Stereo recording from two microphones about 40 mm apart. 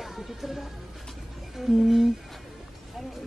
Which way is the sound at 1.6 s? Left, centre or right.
Centre.